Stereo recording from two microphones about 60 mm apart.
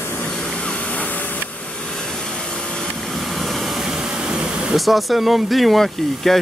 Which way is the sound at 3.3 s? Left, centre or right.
Centre.